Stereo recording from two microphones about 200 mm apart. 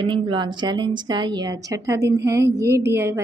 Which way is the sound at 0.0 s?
25° right (ahead or behind).